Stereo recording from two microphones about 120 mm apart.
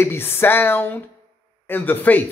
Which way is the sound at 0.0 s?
20° left (ahead or behind).